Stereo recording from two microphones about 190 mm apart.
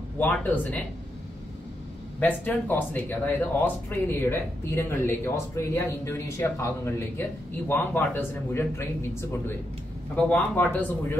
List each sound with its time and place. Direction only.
0.2 s speech: 10° left (ahead or behind)
2.1 s speech: 10° left (ahead or behind)
10.1 s speech: 10° left (ahead or behind)